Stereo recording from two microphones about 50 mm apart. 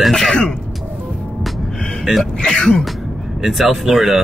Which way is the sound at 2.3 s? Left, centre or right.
Centre.